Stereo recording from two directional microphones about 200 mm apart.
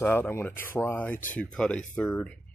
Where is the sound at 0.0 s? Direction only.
10° left (ahead or behind).